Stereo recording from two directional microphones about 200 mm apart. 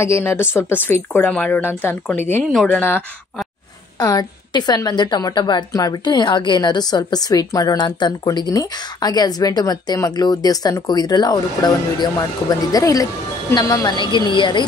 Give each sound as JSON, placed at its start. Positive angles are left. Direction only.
{"t": 0.0, "sound": "a woman's voice", "side_deg": 15}